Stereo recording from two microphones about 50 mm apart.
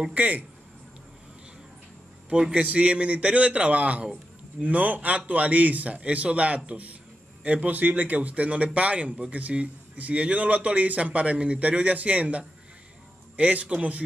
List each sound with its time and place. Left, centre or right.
0.1 s speech: right
2.5 s a man's voice: right